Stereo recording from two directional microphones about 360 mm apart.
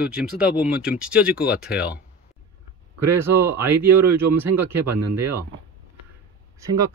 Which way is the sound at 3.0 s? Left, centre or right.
Centre.